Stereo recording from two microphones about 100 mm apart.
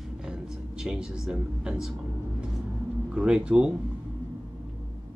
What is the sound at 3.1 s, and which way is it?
Speech, 10° right (ahead or behind).